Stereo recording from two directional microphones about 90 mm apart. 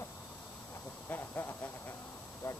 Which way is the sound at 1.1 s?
25° left (ahead or behind).